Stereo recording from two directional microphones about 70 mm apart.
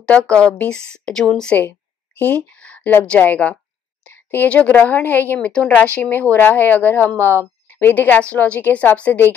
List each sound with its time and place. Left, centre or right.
0.0 s a woman's voice: centre
4.1 s a sound: left
4.5 s a woman's voice: left